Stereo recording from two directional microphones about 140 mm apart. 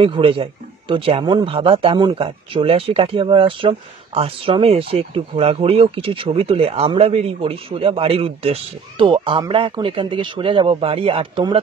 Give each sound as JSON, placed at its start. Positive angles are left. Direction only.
{"t": 0.0, "sound": "a man's voice", "side_deg": -40}